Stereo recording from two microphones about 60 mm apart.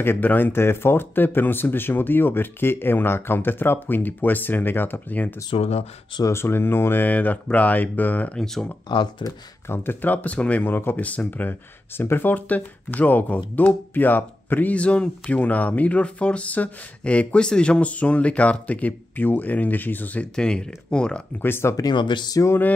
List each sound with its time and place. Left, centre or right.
0.0 s speech: left
6.3 s speech: left
7.1 s speech: left
9.7 s speech: left
10.7 s speech: left
11.1 s speech: left
20.3 s speech: centre
21.4 s speech: left
21.7 s speech: left